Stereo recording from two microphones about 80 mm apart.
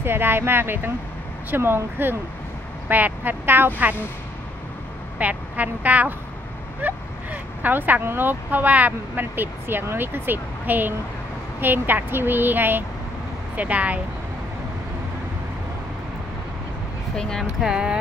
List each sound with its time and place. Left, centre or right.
0.0 s speech: right
5.2 s speech: centre
17.2 s speech: centre
17.6 s speech: centre